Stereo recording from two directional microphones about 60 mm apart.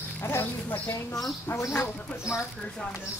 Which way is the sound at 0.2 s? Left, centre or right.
Left.